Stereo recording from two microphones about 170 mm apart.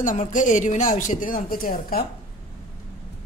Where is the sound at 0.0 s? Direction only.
50° left (ahead or behind).